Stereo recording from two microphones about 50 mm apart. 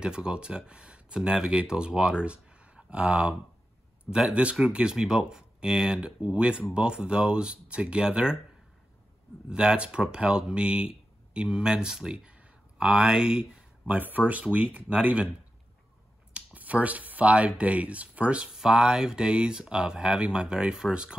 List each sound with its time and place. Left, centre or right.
0.0 s speech: centre
9.5 s speech: centre
13.9 s speech: right
16.3 s speech: right
18.5 s speech: centre